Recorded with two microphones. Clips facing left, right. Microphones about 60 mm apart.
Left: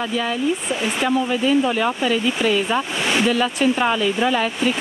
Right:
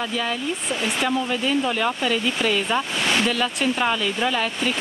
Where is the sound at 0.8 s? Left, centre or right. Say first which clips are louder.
Left 3 dB; centre.